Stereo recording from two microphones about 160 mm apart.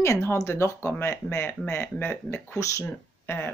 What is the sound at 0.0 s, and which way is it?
Speech, 15° left (ahead or behind).